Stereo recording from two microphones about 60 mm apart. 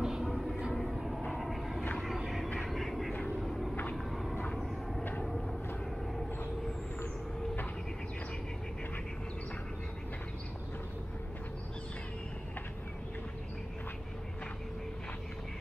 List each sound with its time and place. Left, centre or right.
0.0 s music: centre
0.7 s vehicle: centre
2.1 s a sound: centre
2.6 s vehicle: centre
3.1 s vehicle: left
3.3 s vehicle: centre